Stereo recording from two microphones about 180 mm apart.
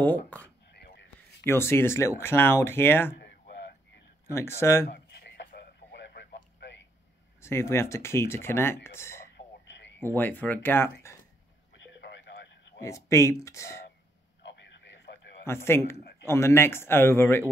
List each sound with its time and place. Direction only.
0.3 s a sound: 5° left (ahead or behind)
0.7 s a sound: 65° left (ahead or behind)
1.4 s speech: 15° left (ahead or behind)
3.2 s a sound: 60° left (ahead or behind)
4.3 s speech: 15° left (ahead or behind)
4.8 s radio: 60° left (ahead or behind)
7.4 s speech: 15° left (ahead or behind)
9.7 s a sound: 85° left
9.9 s speech: 10° left (ahead or behind)
11.7 s radio: 80° left
12.8 s speech: 15° left (ahead or behind)
14.4 s radio: 75° left (ahead or behind)
15.4 s speech: 15° left (ahead or behind)